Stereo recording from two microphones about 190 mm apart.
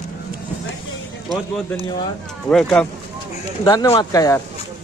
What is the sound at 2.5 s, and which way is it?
Speech, 5° left (ahead or behind).